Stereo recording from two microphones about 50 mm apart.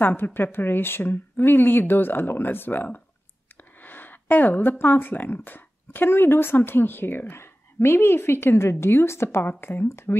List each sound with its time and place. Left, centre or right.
0.0 s speech: left